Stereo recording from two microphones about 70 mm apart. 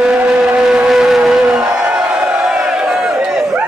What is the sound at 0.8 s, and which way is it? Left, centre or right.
Music, centre.